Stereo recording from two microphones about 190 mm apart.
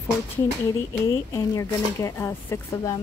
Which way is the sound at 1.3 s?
15° left (ahead or behind).